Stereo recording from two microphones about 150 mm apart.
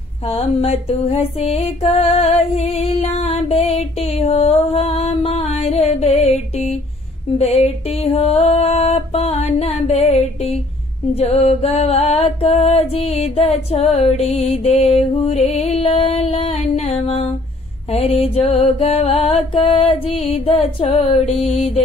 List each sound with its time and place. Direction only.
0.3 s music: 40° left (ahead or behind)
17.9 s mantra: 40° left (ahead or behind)